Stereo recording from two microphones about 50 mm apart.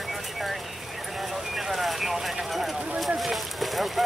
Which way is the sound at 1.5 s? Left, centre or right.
Centre.